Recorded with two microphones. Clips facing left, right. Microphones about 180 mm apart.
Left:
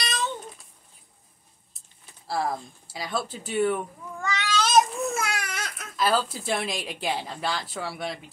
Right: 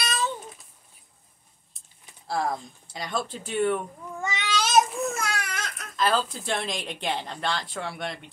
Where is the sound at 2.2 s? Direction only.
5° left (ahead or behind).